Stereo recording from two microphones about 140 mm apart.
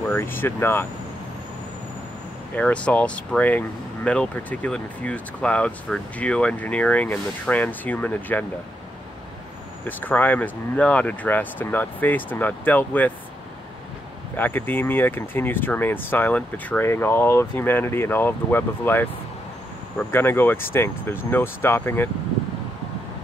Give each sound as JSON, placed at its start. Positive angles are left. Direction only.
{"t": 0.1, "sound": "speech", "side_deg": 15}
{"t": 2.5, "sound": "speech", "side_deg": 10}
{"t": 9.8, "sound": "speech", "side_deg": 10}
{"t": 14.3, "sound": "speech", "side_deg": 15}